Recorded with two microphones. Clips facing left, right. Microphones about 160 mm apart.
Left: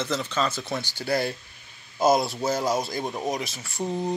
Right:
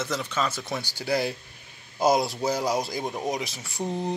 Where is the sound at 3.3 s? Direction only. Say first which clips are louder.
Even; 15° right (ahead or behind).